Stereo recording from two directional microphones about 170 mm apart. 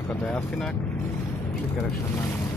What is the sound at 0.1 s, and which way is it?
Speech, 10° left (ahead or behind).